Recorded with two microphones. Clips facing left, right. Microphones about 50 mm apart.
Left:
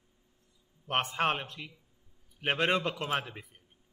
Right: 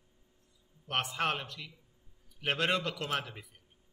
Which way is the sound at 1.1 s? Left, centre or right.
Left.